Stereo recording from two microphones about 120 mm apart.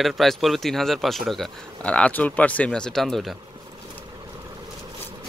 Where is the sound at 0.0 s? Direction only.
Centre (ahead or behind).